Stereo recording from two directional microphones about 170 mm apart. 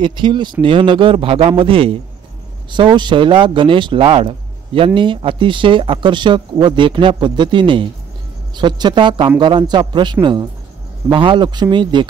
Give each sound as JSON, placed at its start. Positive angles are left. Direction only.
{"t": 0.0, "sound": "a man's voice", "side_deg": -30}